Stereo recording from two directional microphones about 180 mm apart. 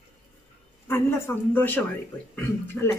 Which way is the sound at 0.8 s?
15° left (ahead or behind).